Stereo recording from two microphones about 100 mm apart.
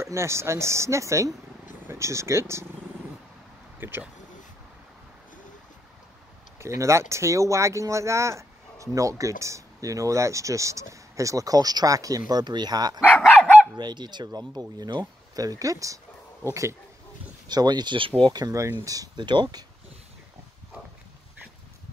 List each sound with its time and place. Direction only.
0.0 s speech: 30° right (ahead or behind)
3.8 s speech: 20° right (ahead or behind)
6.6 s speech: 30° right (ahead or behind)
17.5 s speech: 45° right (ahead or behind); by 18.3 s 60° right (ahead or behind)
18.3 s speech: 35° right (ahead or behind)
19.2 s speech: 50° right (ahead or behind)